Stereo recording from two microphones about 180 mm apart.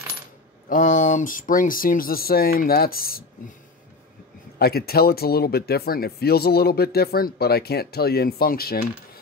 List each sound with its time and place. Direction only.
0.7 s speech: 45° left (ahead or behind)
4.6 s speech: 60° left (ahead or behind)